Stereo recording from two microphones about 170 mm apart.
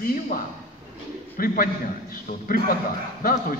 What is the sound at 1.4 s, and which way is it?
Speech, 55° left (ahead or behind).